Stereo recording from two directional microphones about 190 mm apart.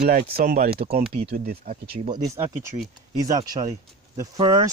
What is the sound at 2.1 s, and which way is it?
Speech, 15° right (ahead or behind).